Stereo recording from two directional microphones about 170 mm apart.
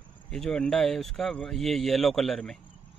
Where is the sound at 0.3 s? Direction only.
5° left (ahead or behind).